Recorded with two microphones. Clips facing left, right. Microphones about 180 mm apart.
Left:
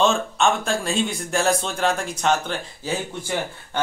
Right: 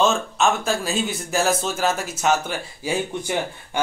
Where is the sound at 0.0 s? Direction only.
Centre (ahead or behind).